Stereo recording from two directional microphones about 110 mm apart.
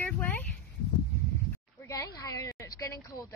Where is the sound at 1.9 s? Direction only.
35° left (ahead or behind).